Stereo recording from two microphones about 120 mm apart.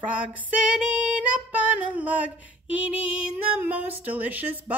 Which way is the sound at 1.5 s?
10° right (ahead or behind).